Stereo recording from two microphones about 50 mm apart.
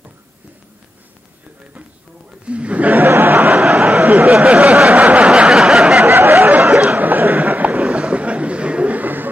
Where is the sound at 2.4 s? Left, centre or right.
Right.